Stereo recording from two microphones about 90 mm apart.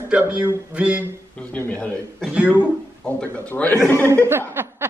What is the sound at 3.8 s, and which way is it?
Speech, 30° left (ahead or behind).